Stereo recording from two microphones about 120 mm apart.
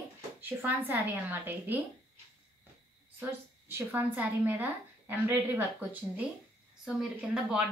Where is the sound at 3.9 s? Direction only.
15° right (ahead or behind).